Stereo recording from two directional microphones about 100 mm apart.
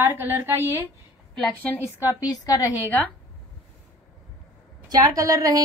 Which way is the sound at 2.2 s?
35° left (ahead or behind).